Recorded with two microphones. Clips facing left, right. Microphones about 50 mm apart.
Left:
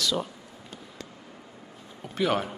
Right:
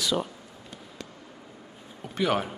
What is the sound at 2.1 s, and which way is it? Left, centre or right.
Speech, centre.